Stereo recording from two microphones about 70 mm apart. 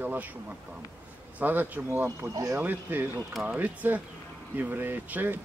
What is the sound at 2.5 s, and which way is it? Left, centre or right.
Speech, right.